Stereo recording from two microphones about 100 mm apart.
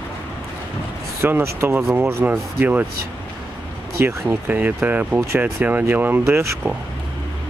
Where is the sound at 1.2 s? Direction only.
25° right (ahead or behind).